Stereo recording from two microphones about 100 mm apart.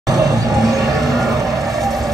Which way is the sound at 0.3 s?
40° right (ahead or behind).